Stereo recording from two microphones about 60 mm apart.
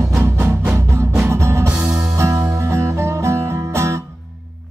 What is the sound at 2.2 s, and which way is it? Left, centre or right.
Music, right.